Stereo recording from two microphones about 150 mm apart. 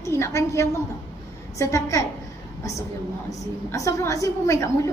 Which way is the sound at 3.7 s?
20° left (ahead or behind).